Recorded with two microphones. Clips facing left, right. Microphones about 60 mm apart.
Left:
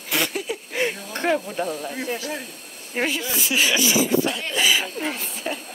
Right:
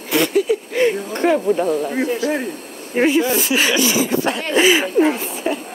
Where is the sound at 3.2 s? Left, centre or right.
Right.